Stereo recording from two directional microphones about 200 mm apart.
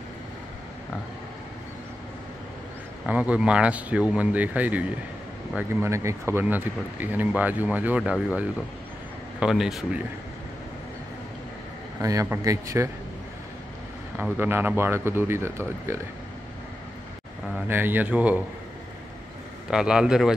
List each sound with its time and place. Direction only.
3.1 s speech: 5° right (ahead or behind)
12.0 s speech: 15° right (ahead or behind)
14.1 s speech: 10° right (ahead or behind)
17.6 s speech: 10° right (ahead or behind)
19.7 s speech: 5° right (ahead or behind)